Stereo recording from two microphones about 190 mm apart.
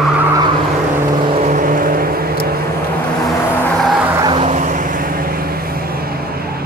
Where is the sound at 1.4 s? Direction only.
45° right (ahead or behind).